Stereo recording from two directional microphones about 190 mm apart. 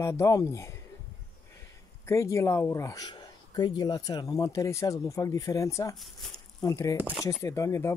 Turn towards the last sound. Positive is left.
turn(degrees=15)  # may be behind; listen again after turning